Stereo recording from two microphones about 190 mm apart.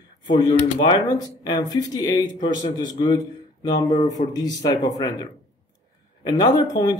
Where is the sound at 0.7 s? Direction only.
20° left (ahead or behind).